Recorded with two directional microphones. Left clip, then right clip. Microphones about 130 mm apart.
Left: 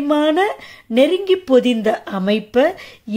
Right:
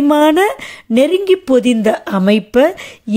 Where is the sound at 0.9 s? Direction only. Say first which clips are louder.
Right 3 dB; 50° right (ahead or behind).